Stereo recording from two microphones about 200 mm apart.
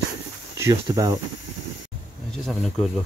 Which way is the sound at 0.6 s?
15° right (ahead or behind).